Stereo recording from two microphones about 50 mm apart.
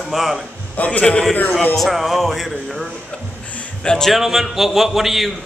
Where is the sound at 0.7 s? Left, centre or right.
Left.